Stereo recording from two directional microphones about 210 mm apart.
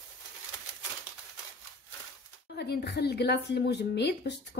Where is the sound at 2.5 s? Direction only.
50° left (ahead or behind).